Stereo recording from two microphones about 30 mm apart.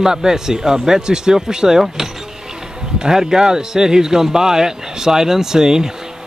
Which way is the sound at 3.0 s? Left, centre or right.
Right.